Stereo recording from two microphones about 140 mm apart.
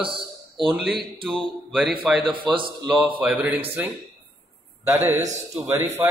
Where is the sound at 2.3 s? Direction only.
35° right (ahead or behind).